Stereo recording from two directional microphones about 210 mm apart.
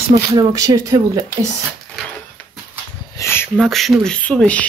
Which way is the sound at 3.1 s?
10° left (ahead or behind).